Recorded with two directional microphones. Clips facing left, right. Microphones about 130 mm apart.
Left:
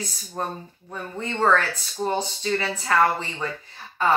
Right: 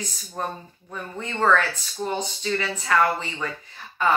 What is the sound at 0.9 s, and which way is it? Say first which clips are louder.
Speech: left 2 dB; 30° left (ahead or behind).